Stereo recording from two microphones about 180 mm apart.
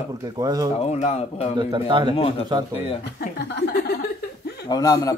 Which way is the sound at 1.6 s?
25° right (ahead or behind).